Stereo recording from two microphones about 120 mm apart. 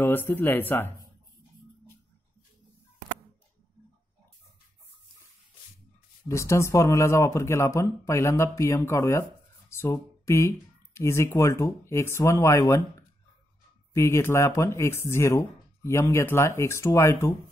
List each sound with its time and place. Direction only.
0.0 s speech: 20° left (ahead or behind)
6.2 s speech: 25° left (ahead or behind)
13.9 s speech: 20° left (ahead or behind)